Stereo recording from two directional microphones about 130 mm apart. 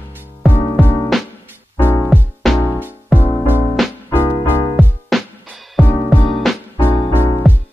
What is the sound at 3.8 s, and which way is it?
Music, centre (ahead or behind).